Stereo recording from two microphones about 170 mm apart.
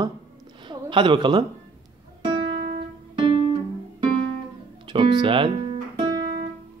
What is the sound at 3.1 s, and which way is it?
Guitar, 30° right (ahead or behind).